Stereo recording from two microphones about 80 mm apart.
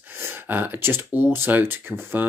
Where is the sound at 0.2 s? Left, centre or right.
Right.